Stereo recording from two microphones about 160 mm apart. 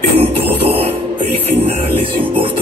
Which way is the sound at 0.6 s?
35° right (ahead or behind).